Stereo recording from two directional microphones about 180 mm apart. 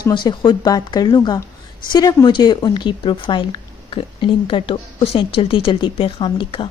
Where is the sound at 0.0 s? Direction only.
25° left (ahead or behind).